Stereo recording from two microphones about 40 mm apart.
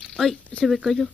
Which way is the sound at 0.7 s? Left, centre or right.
Centre.